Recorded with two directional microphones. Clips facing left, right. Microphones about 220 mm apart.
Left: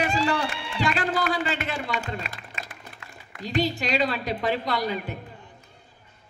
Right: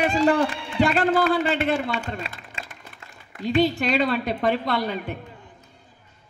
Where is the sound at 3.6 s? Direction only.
55° right (ahead or behind).